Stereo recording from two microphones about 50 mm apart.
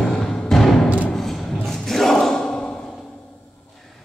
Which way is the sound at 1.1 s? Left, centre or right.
Centre.